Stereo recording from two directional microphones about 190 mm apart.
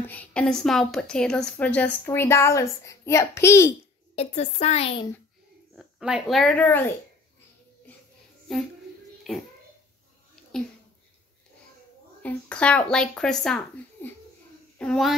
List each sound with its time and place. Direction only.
0.0 s a woman's voice: 10° left (ahead or behind)
4.1 s a woman's voice: 35° left (ahead or behind)
5.8 s speech: 5° right (ahead or behind)
8.5 s a child's voice: centre (ahead or behind)
12.2 s speech: 5° left (ahead or behind)
14.0 s a sound: 10° left (ahead or behind)
14.8 s speech: centre (ahead or behind)